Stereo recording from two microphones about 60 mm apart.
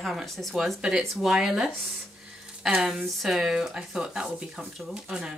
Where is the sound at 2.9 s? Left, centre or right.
Centre.